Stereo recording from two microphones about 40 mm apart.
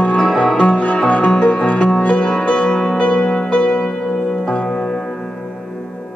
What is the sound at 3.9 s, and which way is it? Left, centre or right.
Music, centre.